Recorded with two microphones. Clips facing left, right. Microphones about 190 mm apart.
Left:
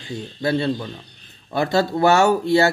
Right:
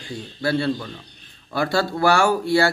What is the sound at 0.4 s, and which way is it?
Speech, 20° left (ahead or behind).